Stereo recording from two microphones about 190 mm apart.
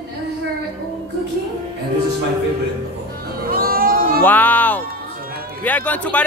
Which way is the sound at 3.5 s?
50° right (ahead or behind).